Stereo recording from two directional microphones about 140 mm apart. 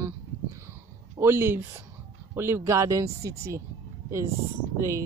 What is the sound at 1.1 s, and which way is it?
Speech, 15° right (ahead or behind).